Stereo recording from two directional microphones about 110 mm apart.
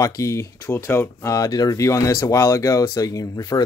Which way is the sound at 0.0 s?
30° left (ahead or behind).